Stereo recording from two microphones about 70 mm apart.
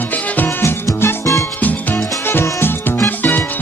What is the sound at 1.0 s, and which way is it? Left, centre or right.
Music, left.